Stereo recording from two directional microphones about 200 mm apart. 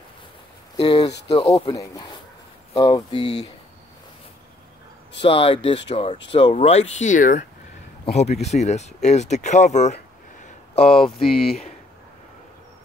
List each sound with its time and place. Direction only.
0.7 s speech: 20° left (ahead or behind)
5.2 s speech: 25° left (ahead or behind)
10.4 s a sound: 30° left (ahead or behind)